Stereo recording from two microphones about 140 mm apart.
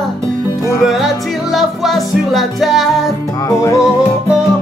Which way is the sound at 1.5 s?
Centre (ahead or behind).